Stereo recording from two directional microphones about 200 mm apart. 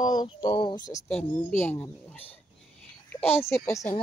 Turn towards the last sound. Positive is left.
turn(degrees=10)  # may be behind; listen again after turning